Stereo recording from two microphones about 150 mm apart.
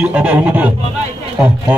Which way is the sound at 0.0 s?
10° right (ahead or behind).